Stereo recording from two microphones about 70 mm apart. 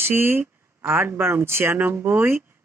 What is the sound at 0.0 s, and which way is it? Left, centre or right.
Speech, right.